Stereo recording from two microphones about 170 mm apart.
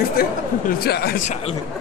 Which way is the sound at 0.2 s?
60° left (ahead or behind).